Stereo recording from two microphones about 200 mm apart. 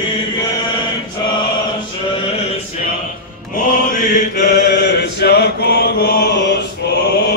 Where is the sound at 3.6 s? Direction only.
40° left (ahead or behind).